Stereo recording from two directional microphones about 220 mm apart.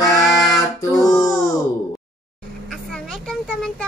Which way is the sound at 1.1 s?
15° left (ahead or behind).